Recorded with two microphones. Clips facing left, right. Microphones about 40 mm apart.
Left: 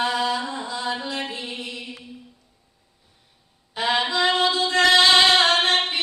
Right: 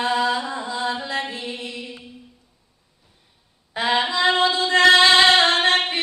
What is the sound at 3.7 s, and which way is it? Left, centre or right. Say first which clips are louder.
Female singing: right 1 dB; right.